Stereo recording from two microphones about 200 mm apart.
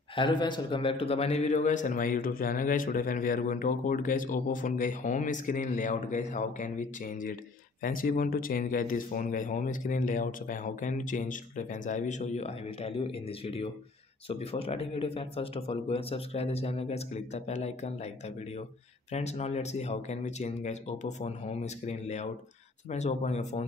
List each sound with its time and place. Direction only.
0.1 s a man's voice: 25° left (ahead or behind)
19.1 s a man's voice: 35° left (ahead or behind)